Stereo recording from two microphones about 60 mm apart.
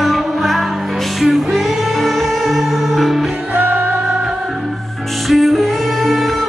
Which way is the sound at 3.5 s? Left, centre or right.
Right.